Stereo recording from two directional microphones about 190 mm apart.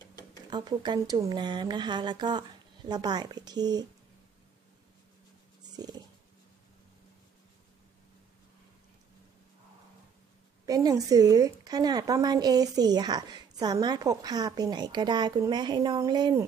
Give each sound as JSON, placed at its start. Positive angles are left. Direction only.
{"t": 0.5, "sound": "a woman's voice", "side_deg": -25}
{"t": 5.8, "sound": "dog", "side_deg": -20}
{"t": 10.6, "sound": "a woman's voice", "side_deg": -20}